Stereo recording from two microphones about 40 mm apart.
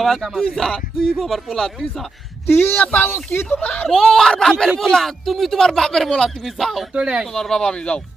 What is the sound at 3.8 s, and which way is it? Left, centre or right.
Speech, centre.